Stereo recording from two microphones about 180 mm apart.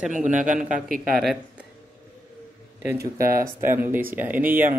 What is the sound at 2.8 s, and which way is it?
Speech, 15° right (ahead or behind).